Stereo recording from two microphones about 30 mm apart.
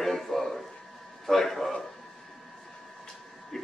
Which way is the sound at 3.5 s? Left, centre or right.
Centre.